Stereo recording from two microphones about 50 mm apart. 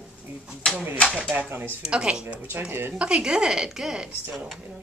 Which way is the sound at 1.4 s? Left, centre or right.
Right.